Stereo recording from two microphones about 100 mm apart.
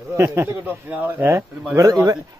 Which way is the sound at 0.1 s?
25° right (ahead or behind).